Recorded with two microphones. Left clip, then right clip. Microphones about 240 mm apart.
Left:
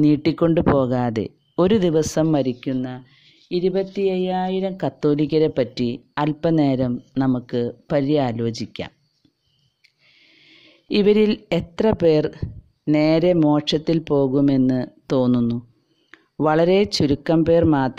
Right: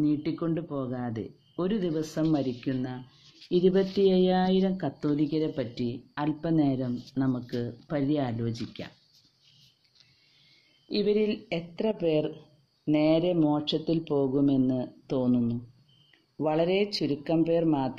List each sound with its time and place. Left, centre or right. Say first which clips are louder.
0.0 s speech: left 11 dB; left
10.9 s speech: left 9 dB; left